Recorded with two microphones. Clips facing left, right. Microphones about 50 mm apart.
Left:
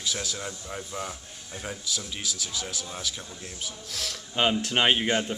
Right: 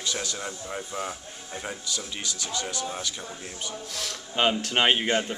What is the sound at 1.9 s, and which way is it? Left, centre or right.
Speech, centre.